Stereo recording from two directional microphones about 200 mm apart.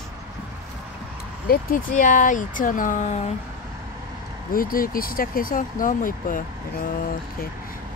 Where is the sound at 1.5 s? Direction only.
45° left (ahead or behind).